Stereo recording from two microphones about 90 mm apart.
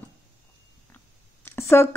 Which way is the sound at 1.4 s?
30° left (ahead or behind).